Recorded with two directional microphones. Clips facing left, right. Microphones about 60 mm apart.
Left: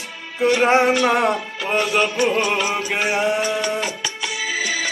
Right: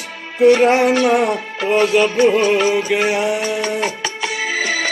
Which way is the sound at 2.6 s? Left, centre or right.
Left.